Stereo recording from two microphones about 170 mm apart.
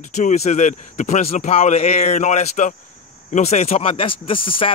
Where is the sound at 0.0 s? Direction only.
45° left (ahead or behind).